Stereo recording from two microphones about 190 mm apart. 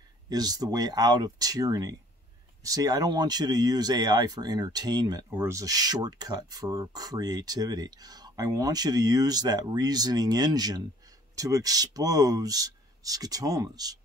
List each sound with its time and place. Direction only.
0.3 s speech: 20° right (ahead or behind)